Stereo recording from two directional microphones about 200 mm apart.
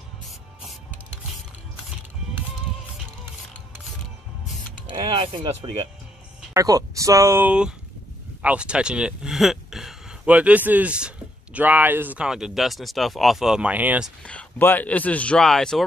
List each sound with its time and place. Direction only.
5.1 s speech: 25° right (ahead or behind)
6.5 s speech: 15° right (ahead or behind)
14.2 s speech: 5° left (ahead or behind)